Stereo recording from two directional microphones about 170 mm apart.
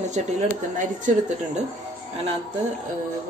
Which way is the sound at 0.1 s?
45° right (ahead or behind).